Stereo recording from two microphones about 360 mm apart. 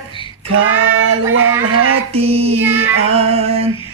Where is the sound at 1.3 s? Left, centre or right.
Right.